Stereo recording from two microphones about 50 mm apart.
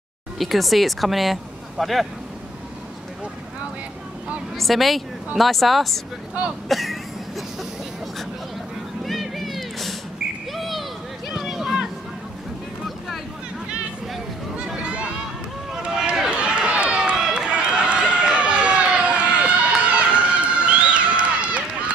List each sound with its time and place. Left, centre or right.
0.4 s speech: centre
4.6 s speech: centre
6.7 s throat clearing: centre
9.0 s a sound: centre
10.5 s children playing: centre
14.8 s a sound: right
16.3 s run: right
17.1 s run: centre